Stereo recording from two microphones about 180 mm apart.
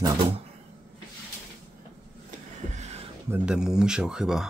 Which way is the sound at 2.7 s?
40° right (ahead or behind).